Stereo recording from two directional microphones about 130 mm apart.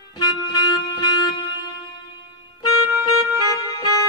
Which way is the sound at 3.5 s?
30° left (ahead or behind).